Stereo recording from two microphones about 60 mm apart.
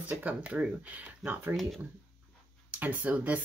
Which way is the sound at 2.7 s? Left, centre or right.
Right.